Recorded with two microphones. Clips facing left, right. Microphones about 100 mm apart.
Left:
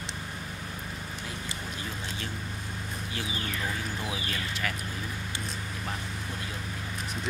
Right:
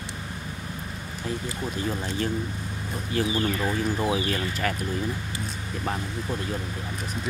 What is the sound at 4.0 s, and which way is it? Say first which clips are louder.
Speech: right 9 dB; 45° right (ahead or behind).